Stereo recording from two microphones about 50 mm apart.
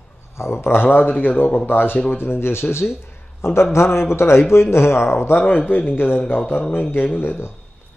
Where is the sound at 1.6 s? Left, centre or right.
Left.